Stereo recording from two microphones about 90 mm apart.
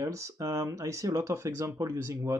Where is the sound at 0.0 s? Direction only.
35° right (ahead or behind).